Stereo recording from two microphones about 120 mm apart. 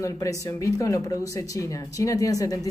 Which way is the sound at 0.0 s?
30° left (ahead or behind).